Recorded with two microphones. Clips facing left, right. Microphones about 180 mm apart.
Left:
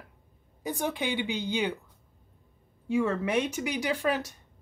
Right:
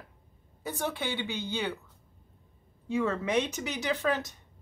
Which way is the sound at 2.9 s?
10° left (ahead or behind).